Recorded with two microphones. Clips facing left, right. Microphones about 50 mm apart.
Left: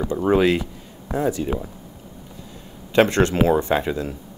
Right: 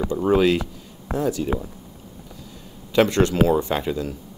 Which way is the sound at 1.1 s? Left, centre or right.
Left.